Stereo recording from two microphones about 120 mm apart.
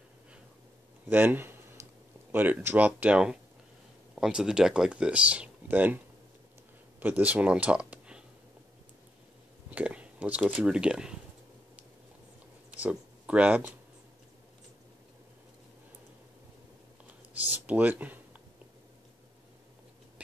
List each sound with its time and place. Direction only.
1.0 s speech: 15° right (ahead or behind)
9.7 s speech: 10° right (ahead or behind)
12.7 s speech: 10° right (ahead or behind)
17.3 s a sound: 15° right (ahead or behind)